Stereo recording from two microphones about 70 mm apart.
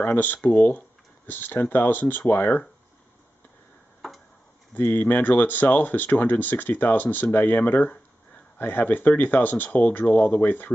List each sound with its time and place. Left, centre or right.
0.0 s speech: left
4.7 s speech: left